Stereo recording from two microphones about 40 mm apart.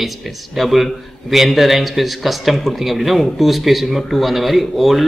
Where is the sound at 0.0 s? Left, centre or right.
Centre.